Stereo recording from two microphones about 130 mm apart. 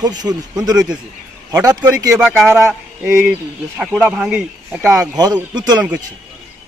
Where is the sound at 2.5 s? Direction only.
20° right (ahead or behind).